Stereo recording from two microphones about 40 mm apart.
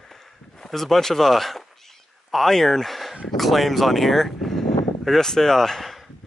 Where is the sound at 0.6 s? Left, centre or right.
Centre.